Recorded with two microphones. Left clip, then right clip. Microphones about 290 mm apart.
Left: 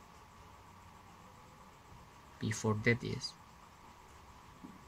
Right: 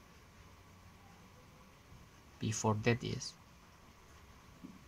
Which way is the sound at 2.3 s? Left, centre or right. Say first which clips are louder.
Right 1 dB; centre.